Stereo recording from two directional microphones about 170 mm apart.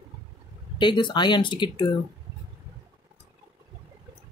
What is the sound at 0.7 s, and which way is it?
Speech, 25° left (ahead or behind).